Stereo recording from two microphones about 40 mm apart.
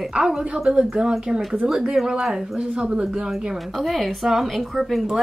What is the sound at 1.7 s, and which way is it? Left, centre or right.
Speech, centre.